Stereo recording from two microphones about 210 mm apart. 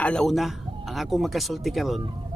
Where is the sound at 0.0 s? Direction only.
5° left (ahead or behind).